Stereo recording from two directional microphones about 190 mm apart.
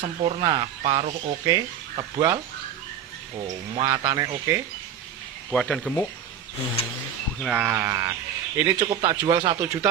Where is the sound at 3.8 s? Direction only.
20° right (ahead or behind).